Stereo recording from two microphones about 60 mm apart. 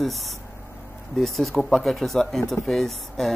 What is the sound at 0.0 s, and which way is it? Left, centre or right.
Speech, centre.